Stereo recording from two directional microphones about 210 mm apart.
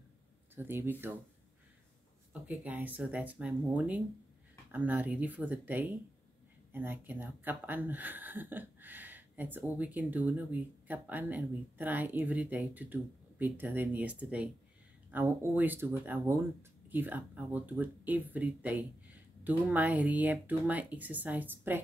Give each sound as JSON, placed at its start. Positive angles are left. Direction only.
{"t": 0.6, "sound": "speech", "side_deg": -10}
{"t": 2.4, "sound": "speech", "side_deg": -5}
{"t": 16.9, "sound": "speech", "side_deg": -10}